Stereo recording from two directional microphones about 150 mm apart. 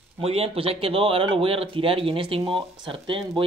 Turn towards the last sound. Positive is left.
turn(degrees=-35)  # may be behind; listen again after turning